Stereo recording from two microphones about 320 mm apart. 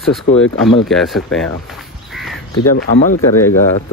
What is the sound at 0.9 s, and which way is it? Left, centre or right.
Speech, centre.